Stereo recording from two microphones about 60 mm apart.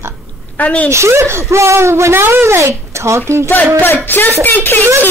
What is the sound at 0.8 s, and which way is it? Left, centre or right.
Speech, right.